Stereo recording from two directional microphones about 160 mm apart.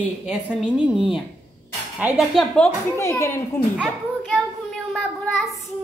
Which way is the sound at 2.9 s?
15° left (ahead or behind).